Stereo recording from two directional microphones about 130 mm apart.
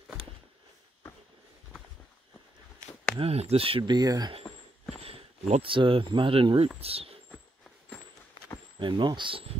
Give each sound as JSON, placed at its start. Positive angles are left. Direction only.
{"t": 3.2, "sound": "speech", "side_deg": -50}
{"t": 5.0, "sound": "speech", "side_deg": -45}
{"t": 8.7, "sound": "speech", "side_deg": -35}